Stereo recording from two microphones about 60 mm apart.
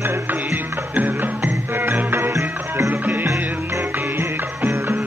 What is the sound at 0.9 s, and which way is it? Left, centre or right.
Music, right.